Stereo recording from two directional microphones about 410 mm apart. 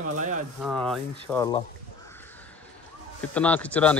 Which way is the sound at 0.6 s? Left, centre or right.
Centre.